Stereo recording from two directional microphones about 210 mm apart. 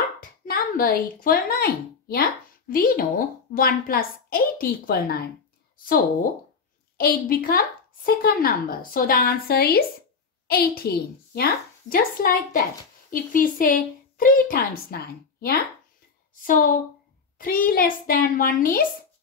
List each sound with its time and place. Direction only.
0.5 s a woman's voice: 45° left (ahead or behind)
7.0 s a woman's voice: 45° left (ahead or behind)
17.4 s a woman's voice: 40° left (ahead or behind)